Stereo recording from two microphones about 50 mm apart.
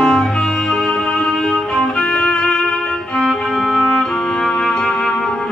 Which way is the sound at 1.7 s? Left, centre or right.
Centre.